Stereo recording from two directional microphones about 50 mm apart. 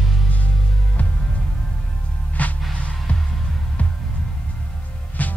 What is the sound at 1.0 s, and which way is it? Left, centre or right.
Music, left.